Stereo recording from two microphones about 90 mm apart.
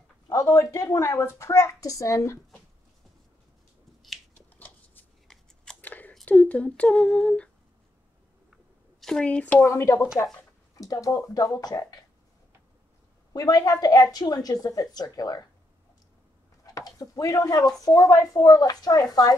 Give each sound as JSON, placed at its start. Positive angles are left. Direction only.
{"t": 0.3, "sound": "a woman's voice", "side_deg": 35}
{"t": 4.6, "sound": "a sound", "side_deg": 20}
{"t": 6.2, "sound": "humming", "side_deg": 15}
{"t": 9.0, "sound": "speech", "side_deg": 10}
{"t": 9.7, "sound": "a woman's voice", "side_deg": 35}
{"t": 13.3, "sound": "a woman's voice", "side_deg": 45}
{"t": 16.6, "sound": "a woman's voice", "side_deg": 40}